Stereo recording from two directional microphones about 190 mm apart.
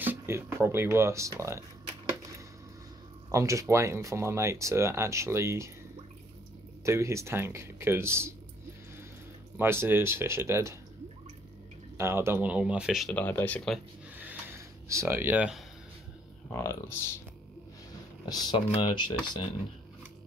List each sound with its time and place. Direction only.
0.0 s speech: 10° right (ahead or behind)
3.3 s speech: 15° right (ahead or behind)
6.8 s speech: 15° right (ahead or behind)
9.6 s speech: 10° right (ahead or behind)
12.0 s speech: 15° right (ahead or behind); by 13.6 s 10° left (ahead or behind)
14.9 s speech: 15° right (ahead or behind)
16.5 s speech: 15° left (ahead or behind)
18.3 s speech: 20° left (ahead or behind)